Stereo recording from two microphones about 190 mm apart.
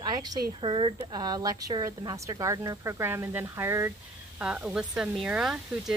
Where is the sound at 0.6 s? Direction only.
25° right (ahead or behind).